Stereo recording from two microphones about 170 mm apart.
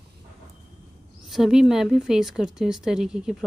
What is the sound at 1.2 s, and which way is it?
Speech, centre (ahead or behind).